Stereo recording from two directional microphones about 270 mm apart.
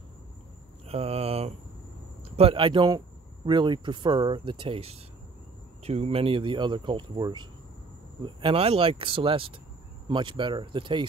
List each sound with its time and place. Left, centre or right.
0.8 s speech: right